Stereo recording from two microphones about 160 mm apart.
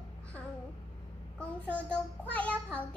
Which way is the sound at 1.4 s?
10° left (ahead or behind).